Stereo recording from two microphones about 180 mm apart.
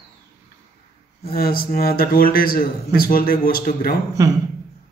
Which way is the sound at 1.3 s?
55° left (ahead or behind).